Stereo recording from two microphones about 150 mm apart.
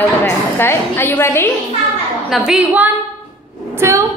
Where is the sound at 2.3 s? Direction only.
5° right (ahead or behind).